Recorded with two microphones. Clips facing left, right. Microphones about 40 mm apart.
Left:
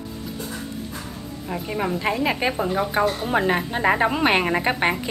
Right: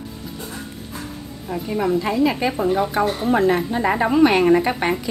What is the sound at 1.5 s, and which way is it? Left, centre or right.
A woman's voice, left.